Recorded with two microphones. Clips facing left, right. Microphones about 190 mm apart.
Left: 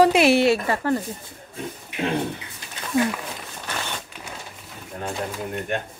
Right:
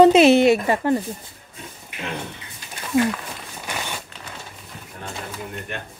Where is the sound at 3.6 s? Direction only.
10° right (ahead or behind).